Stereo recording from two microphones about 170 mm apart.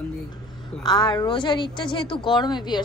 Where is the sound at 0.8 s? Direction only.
25° left (ahead or behind).